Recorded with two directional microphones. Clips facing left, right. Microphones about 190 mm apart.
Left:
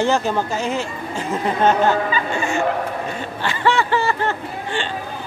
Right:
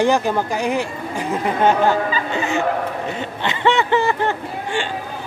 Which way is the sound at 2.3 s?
20° right (ahead or behind).